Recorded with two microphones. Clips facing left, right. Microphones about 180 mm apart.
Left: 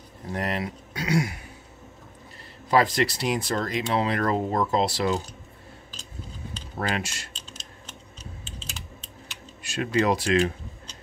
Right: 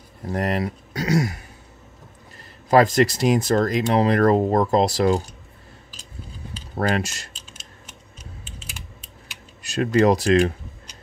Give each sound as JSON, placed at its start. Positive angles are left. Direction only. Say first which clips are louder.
{"t": 0.3, "sound": "speech", "louder": "right 5 dB", "side_deg": -40}
{"t": 2.7, "sound": "speech", "louder": "right 6 dB", "side_deg": -45}
{"t": 6.8, "sound": "speech", "louder": "right 6 dB", "side_deg": -40}
{"t": 7.5, "sound": "a sound", "louder": "left 1 dB", "side_deg": -10}
{"t": 9.6, "sound": "speech", "louder": "right 6 dB", "side_deg": -40}